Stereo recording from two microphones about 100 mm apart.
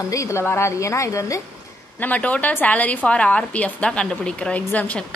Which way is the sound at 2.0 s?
15° left (ahead or behind).